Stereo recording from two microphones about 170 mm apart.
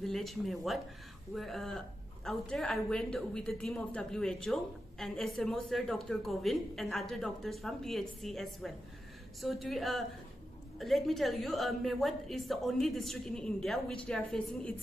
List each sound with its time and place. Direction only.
0.0 s a woman's voice: centre (ahead or behind)